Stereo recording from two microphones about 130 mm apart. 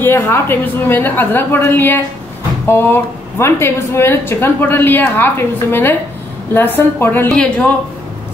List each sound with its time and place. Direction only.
0.0 s a woman's voice: 15° left (ahead or behind)